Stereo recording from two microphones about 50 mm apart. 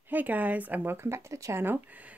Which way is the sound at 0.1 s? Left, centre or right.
Right.